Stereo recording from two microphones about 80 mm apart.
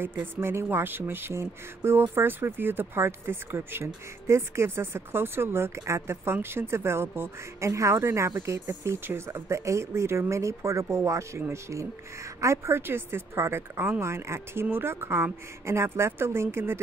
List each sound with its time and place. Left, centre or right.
0.0 s speech: right